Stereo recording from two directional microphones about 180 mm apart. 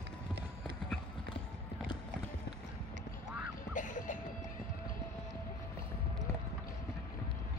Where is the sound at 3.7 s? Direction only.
45° left (ahead or behind).